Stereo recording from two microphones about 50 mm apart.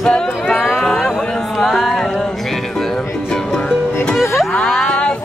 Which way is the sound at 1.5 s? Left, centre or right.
Centre.